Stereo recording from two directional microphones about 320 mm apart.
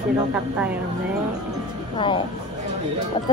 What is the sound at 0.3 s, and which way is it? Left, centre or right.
Speech, centre.